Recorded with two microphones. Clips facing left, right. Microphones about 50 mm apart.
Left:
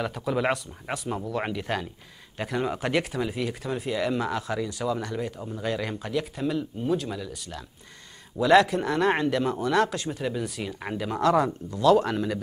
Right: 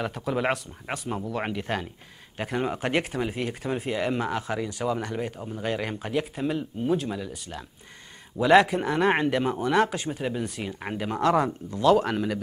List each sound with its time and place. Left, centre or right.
0.0 s speech: centre
4.8 s speech: right; by 12.4 s centre